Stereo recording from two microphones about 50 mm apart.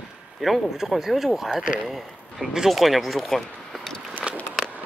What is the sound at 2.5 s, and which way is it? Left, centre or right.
Speech, centre.